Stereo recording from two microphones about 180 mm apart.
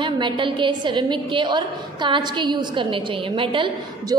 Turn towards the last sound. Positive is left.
turn(degrees=-30)  # may be behind; listen again after turning